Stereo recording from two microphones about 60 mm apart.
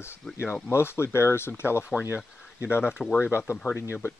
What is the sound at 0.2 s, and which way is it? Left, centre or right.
Speech, centre.